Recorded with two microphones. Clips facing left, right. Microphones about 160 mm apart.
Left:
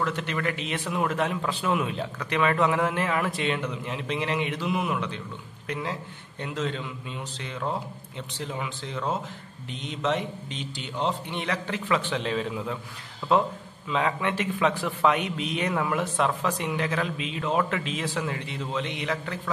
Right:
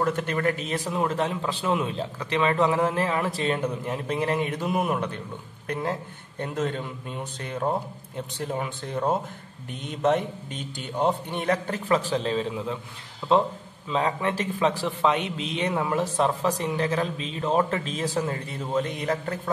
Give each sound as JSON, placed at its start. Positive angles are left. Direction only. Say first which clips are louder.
{"t": 0.0, "sound": "a man's voice", "louder": "right 4 dB", "side_deg": -50}
{"t": 13.8, "sound": "a man's voice", "louder": "right 1 dB", "side_deg": -35}